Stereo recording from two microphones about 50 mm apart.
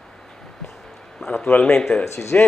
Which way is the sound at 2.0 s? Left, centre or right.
Left.